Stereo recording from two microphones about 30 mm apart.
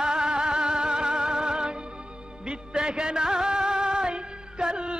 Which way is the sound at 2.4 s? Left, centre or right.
Right.